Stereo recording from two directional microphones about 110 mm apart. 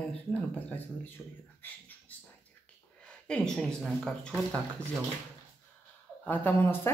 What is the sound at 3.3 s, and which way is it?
Speech, 5° left (ahead or behind).